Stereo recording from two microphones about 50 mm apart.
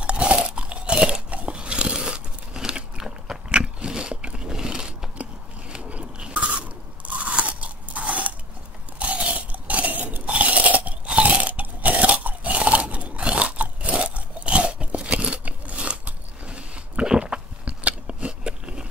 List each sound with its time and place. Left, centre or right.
0.0 s crunch: right
3.5 s biting: centre
4.5 s a sound: centre
5.1 s biting: right
7.1 s crunch: right
7.4 s biting: right
9.0 s crunch: right
17.6 s biting: right